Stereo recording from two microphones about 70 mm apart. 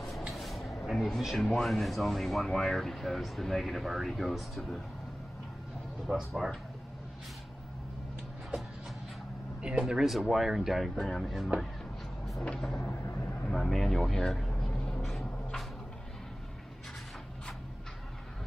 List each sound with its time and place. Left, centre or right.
0.3 s vehicle: centre
0.8 s speech: centre
6.0 s speech: centre
9.6 s speech: centre
12.8 s vehicle: left
13.5 s vehicle: centre
15.0 s a sound: centre